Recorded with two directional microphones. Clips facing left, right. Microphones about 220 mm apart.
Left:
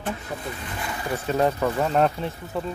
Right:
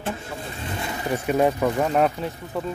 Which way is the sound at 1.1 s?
15° right (ahead or behind).